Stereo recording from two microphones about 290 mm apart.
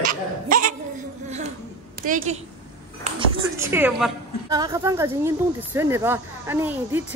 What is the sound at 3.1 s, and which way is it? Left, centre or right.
A woman's voice, centre.